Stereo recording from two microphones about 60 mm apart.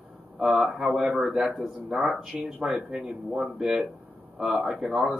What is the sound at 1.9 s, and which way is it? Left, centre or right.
Speech, right.